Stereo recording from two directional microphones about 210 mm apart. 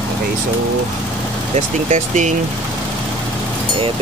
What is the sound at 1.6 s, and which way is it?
Speech, 35° right (ahead or behind).